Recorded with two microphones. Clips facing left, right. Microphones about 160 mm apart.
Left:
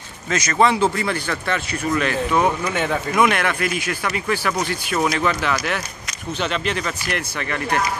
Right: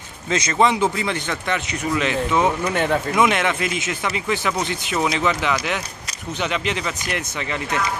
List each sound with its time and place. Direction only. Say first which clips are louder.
0.3 s speech: even; 25° right (ahead or behind)
2.6 s speech: right 2 dB; centre (ahead or behind)
3.2 s speech: left 2 dB; 20° right (ahead or behind)